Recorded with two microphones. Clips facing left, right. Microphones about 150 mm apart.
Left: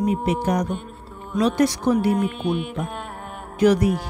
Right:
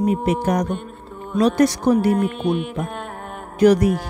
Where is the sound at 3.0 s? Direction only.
50° right (ahead or behind).